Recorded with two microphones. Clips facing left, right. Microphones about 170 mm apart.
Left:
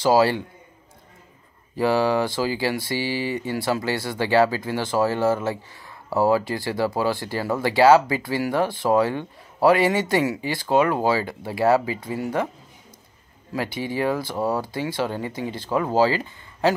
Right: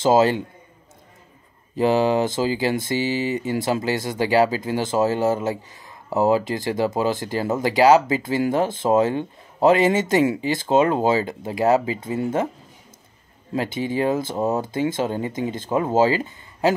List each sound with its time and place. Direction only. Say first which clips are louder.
0.0 s speech: right 1 dB; 20° right (ahead or behind)
1.8 s speech: right 2 dB; 20° right (ahead or behind)
13.5 s speech: right 3 dB; 20° right (ahead or behind)